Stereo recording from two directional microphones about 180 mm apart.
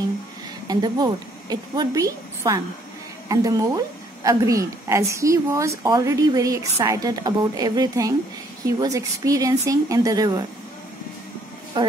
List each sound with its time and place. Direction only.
0.7 s a woman's voice: 25° right (ahead or behind)
11.7 s a woman's voice: 25° right (ahead or behind)